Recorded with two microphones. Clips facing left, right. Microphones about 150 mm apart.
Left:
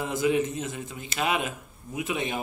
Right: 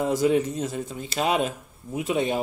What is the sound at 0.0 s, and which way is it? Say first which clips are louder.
Speech: right 4 dB; 40° right (ahead or behind).